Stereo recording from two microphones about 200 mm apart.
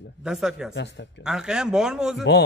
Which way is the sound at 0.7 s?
60° left (ahead or behind).